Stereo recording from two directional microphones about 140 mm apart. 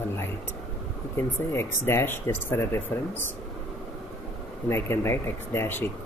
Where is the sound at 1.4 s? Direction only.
15° left (ahead or behind).